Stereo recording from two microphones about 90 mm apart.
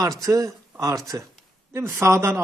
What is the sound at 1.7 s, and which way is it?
Speech, 30° right (ahead or behind).